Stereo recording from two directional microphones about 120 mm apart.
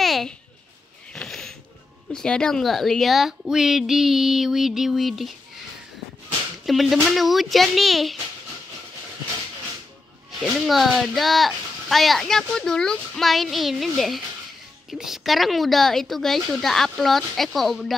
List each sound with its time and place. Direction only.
0.0 s a sound: centre (ahead or behind)
2.1 s speech: 5° left (ahead or behind)
6.6 s speech: centre (ahead or behind)
10.7 s speech: centre (ahead or behind)